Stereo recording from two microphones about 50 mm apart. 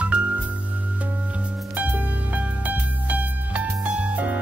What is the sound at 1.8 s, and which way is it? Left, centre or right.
Music, right.